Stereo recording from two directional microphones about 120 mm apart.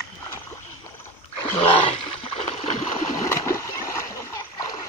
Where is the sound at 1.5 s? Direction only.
45° left (ahead or behind).